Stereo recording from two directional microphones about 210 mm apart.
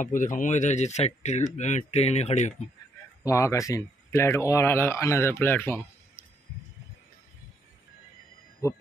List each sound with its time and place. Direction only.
0.0 s speech: 40° left (ahead or behind)
3.3 s speech: 15° left (ahead or behind)